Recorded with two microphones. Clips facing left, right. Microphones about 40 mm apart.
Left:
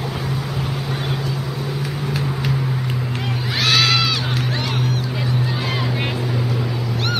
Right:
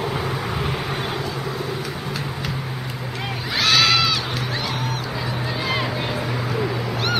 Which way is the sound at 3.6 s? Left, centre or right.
Centre.